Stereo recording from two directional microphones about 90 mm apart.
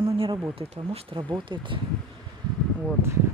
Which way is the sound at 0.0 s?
75° right (ahead or behind).